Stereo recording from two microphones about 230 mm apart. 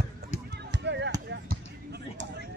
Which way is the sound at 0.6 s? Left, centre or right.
Right.